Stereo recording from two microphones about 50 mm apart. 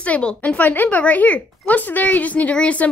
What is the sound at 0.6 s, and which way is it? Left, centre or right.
A woman's voice, left.